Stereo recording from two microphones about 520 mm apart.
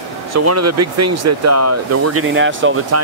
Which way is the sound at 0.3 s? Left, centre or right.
Right.